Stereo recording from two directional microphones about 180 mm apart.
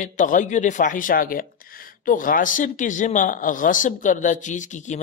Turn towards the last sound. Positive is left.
turn(degrees=45)  # may be behind; listen again after turning